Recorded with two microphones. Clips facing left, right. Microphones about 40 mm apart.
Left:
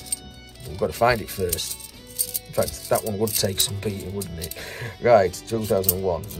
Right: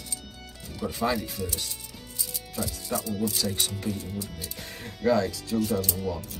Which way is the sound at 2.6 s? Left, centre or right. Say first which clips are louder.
Left 9 dB; left.